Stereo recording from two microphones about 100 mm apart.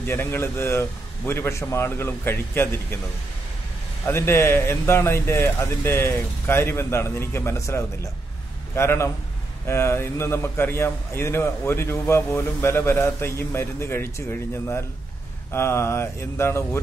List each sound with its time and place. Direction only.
0.0 s a man's voice: 25° left (ahead or behind)
4.0 s a man's voice: 25° left (ahead or behind)
15.5 s a man's voice: 25° left (ahead or behind)